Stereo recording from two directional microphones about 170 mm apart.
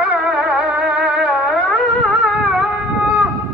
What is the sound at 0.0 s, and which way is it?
Music, 5° right (ahead or behind).